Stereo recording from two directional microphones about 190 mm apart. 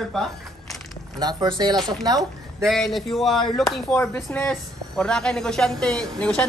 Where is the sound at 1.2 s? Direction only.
20° right (ahead or behind).